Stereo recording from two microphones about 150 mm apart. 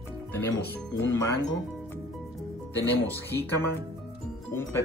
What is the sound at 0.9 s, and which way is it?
Speech, 20° left (ahead or behind).